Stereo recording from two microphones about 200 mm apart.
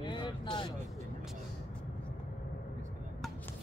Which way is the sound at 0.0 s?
20° left (ahead or behind).